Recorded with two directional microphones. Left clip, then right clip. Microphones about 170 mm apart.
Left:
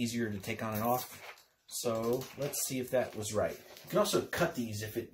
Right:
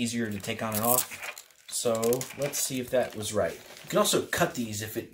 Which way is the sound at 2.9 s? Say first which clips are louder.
Right 5 dB; 15° right (ahead or behind).